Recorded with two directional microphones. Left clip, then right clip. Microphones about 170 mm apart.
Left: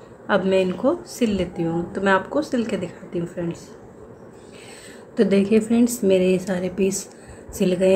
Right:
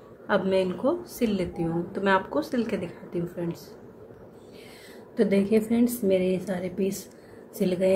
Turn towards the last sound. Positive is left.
turn(degrees=10)  # may be behind; listen again after turning